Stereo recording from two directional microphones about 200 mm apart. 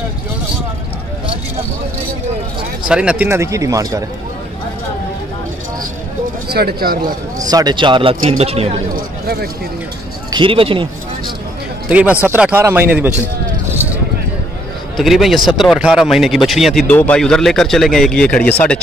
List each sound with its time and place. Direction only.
2.9 s a man's voice: 5° right (ahead or behind)
6.5 s speech: 50° right (ahead or behind)
7.3 s speech: 20° right (ahead or behind)
8.9 s speech: 50° right (ahead or behind)
10.3 s speech: 25° right (ahead or behind)
11.9 s a man's voice: 5° right (ahead or behind)
15.0 s a man's voice: centre (ahead or behind)